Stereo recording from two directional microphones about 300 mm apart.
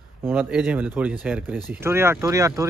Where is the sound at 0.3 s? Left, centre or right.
Centre.